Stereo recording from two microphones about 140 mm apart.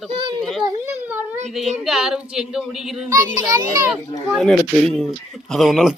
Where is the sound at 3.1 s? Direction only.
25° right (ahead or behind).